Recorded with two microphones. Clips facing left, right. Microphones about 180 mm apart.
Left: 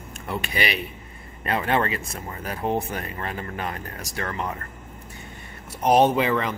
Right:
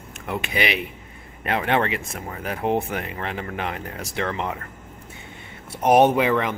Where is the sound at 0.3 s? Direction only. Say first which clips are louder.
Right 2 dB; 15° right (ahead or behind).